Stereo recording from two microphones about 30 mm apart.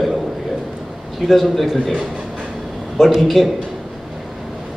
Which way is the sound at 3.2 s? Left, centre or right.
Centre.